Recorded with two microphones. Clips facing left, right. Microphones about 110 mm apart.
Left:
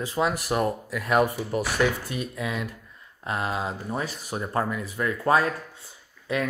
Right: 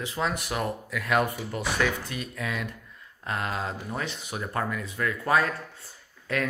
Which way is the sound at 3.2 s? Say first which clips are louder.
Left 2 dB; 30° left (ahead or behind).